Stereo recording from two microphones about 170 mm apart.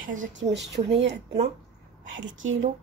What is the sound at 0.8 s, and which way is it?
Speech, 35° right (ahead or behind).